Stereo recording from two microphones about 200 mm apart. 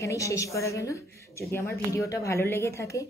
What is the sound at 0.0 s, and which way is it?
A woman's voice, 15° left (ahead or behind).